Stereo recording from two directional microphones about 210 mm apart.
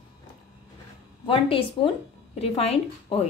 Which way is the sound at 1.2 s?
25° left (ahead or behind).